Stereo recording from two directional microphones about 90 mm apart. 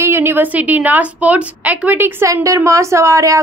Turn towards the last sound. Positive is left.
turn(degrees=-35)  # may be behind; listen again after turning